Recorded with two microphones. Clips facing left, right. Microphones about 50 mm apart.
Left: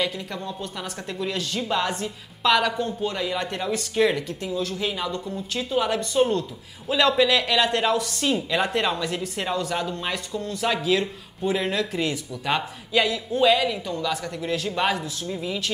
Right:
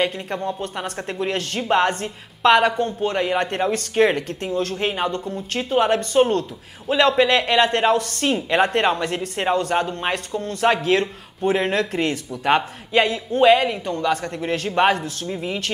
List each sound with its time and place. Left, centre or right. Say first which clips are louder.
0.0 s speech: right 5 dB; right
6.9 s speech: right 3 dB; right